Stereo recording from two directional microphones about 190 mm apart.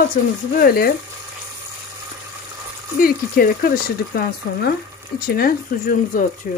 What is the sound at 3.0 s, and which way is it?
Speech, 50° left (ahead or behind).